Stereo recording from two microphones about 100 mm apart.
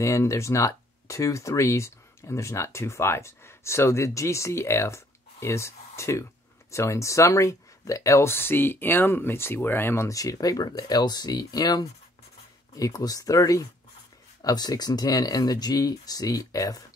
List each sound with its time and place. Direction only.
0.0 s speech: 30° left (ahead or behind)